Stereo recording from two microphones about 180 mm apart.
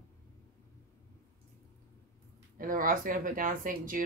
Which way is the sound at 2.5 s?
50° right (ahead or behind).